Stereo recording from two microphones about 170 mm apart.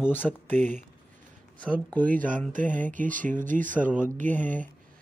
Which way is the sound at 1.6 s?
10° left (ahead or behind).